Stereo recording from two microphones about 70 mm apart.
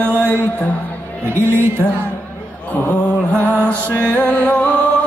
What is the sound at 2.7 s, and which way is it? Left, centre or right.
Mantra, left.